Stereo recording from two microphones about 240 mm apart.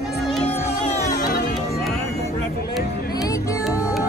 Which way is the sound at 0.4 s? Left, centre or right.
Left.